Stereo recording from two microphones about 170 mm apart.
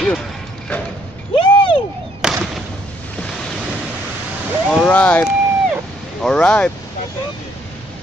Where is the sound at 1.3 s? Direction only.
30° left (ahead or behind).